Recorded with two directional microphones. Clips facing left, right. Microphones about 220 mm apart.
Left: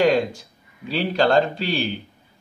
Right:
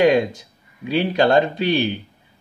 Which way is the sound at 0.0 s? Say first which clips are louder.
Right 3 dB; 20° right (ahead or behind).